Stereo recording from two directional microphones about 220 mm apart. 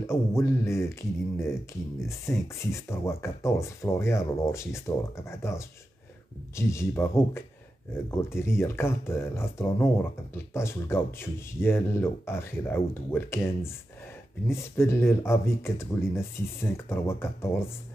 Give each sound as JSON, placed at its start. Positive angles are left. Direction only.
{"t": 0.0, "sound": "speech", "side_deg": 10}